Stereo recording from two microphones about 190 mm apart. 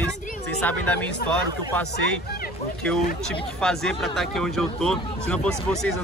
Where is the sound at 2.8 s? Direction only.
5° left (ahead or behind).